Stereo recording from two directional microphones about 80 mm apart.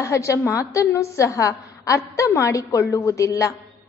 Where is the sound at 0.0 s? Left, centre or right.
Left.